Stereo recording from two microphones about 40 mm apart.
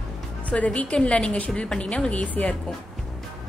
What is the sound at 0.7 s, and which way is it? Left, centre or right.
A woman's voice, left.